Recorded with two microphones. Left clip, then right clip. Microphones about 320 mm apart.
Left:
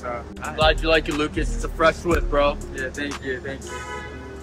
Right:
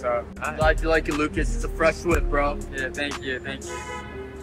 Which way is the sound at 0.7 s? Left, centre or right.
Left.